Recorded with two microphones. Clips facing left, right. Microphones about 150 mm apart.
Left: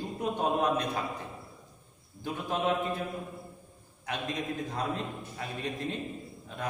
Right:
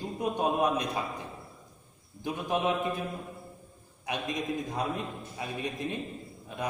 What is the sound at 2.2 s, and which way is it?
Speech, 15° right (ahead or behind).